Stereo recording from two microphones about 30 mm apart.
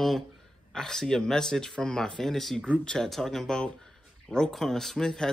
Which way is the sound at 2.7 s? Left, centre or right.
Left.